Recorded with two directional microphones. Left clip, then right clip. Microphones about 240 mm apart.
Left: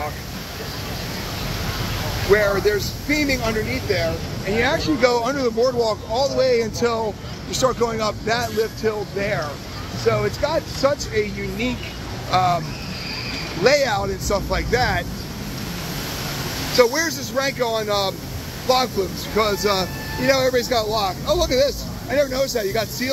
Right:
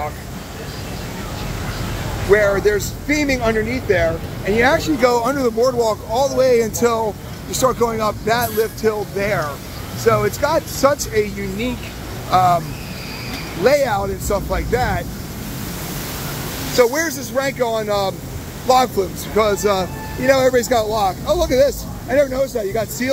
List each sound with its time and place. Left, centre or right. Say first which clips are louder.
2.3 s speech: right 3 dB; centre
13.7 s speech: right 2 dB; centre
16.7 s speech: right 2 dB; centre
18.7 s speech: right 5 dB; right
22.3 s speech: right 2 dB; centre